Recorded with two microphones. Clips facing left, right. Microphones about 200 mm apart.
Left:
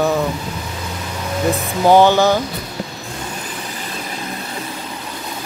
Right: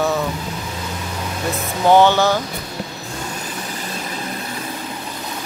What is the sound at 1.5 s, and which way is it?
Speech, 15° left (ahead or behind).